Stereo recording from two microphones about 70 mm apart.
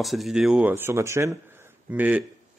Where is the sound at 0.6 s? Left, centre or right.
Right.